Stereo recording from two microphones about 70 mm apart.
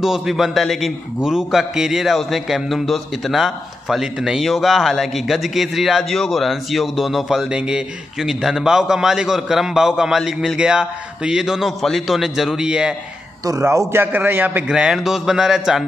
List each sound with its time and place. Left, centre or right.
0.0 s a man's voice: centre
13.5 s a man's voice: right
13.9 s a man's voice: right
14.7 s speech: centre